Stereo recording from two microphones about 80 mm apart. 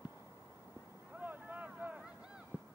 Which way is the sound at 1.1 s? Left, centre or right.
Right.